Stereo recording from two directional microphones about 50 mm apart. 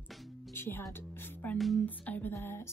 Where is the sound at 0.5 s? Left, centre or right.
Left.